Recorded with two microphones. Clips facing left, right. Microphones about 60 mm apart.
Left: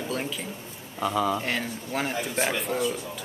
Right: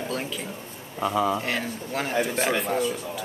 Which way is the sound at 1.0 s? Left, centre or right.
Centre.